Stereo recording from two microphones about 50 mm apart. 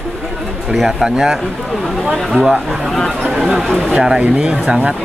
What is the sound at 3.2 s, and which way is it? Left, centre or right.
Speech, centre.